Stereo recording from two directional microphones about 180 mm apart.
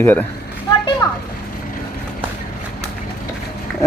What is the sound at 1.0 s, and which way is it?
Vehicle, 15° left (ahead or behind).